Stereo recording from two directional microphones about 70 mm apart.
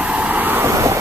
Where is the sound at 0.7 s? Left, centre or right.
Right.